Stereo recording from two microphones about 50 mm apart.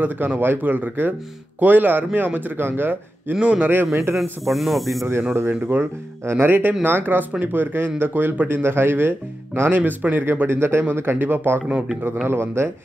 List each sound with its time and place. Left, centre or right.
0.0 s speech: right
3.3 s a man's voice: right
3.6 s speech: right
4.2 s speech: centre
5.3 s speech: right
9.7 s speech: right
10.2 s speech: right